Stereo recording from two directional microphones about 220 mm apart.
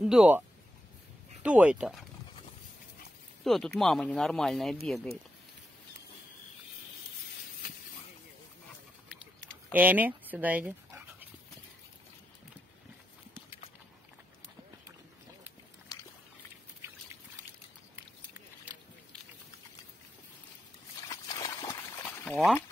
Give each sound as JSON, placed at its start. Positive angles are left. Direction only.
{"t": 0.0, "sound": "speech", "side_deg": -5}
{"t": 1.4, "sound": "speech", "side_deg": -5}
{"t": 3.4, "sound": "speech", "side_deg": 0}
{"t": 9.7, "sound": "dog", "side_deg": -5}
{"t": 15.9, "sound": "a sound", "side_deg": 15}
{"t": 21.1, "sound": "a sound", "side_deg": 15}